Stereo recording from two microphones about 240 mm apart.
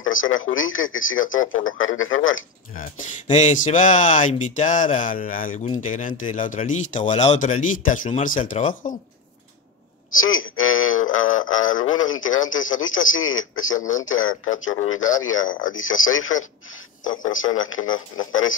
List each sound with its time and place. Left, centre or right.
0.0 s speech: left
2.7 s speech: left
10.1 s speech: left
13.7 s speech: left
14.0 s speech: left
15.4 s speech: left
15.7 s speech: left